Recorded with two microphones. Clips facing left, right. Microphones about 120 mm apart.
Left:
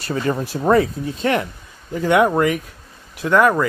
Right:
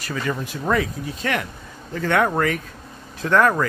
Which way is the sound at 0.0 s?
30° left (ahead or behind).